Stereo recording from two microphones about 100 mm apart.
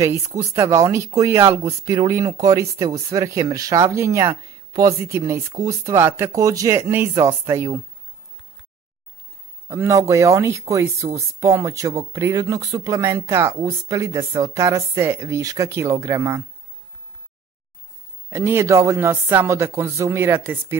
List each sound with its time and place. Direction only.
0.0 s speech: 30° right (ahead or behind)
9.7 s speech: 30° right (ahead or behind)
18.3 s speech: 30° right (ahead or behind)